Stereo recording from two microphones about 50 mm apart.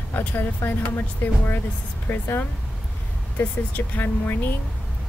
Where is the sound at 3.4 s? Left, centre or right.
Left.